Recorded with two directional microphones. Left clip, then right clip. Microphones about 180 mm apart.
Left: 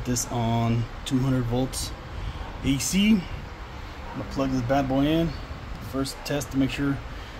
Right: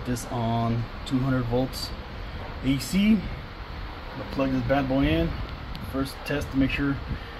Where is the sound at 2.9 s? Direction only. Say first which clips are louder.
Left 2 dB; 15° left (ahead or behind).